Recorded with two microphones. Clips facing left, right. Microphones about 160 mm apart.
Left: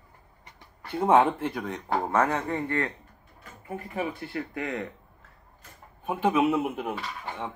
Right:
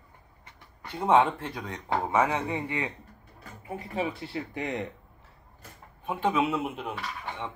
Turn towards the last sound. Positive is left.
turn(degrees=0)  # may be behind; listen again after turning